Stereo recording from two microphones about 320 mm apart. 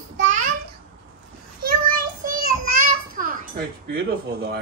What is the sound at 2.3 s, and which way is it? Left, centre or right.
Children playing, right.